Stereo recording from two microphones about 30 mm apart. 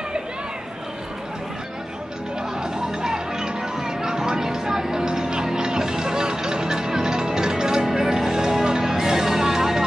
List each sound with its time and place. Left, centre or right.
2.6 s music: right